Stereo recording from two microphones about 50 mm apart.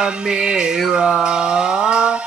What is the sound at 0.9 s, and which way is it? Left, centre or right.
Mantra, centre.